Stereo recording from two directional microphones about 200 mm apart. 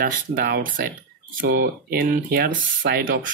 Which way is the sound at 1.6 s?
50° right (ahead or behind).